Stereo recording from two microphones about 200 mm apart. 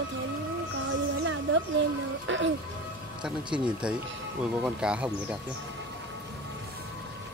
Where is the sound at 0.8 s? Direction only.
70° right (ahead or behind).